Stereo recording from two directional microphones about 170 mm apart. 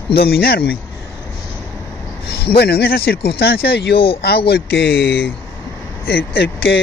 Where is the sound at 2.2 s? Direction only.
70° left (ahead or behind).